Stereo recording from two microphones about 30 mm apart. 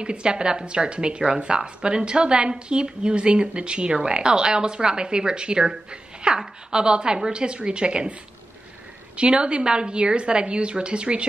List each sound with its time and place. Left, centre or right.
0.0 s a woman's voice: right
9.1 s a woman's voice: right